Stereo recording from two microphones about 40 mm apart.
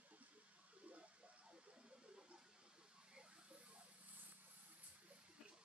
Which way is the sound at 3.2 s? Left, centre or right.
Right.